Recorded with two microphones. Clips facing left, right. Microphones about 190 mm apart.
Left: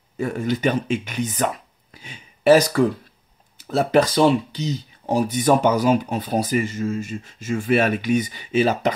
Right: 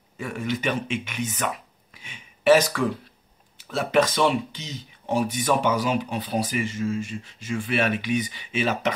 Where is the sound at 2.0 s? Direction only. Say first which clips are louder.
Left 3 dB; 40° left (ahead or behind).